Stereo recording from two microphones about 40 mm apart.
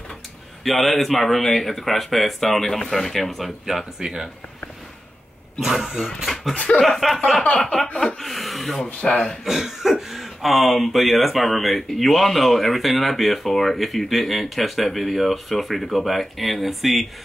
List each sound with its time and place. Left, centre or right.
0.7 s speech: centre
4.0 s speech: centre
5.6 s speech: centre
6.2 s a sound: centre
6.8 s speech: centre
7.5 s a sound: centre
8.2 s speech: centre
9.0 s a sound: centre
9.4 s speech: centre